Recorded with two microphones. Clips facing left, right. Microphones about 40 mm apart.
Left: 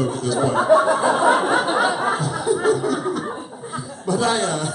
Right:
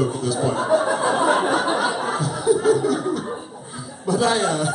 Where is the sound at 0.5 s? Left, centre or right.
Left.